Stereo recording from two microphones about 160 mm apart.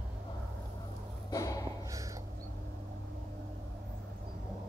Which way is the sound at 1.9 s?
20° right (ahead or behind).